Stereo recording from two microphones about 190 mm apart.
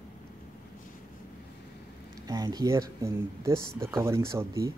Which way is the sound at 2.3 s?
20° right (ahead or behind).